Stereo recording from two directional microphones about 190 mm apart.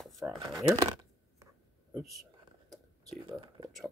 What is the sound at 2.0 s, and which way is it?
Speech, centre (ahead or behind).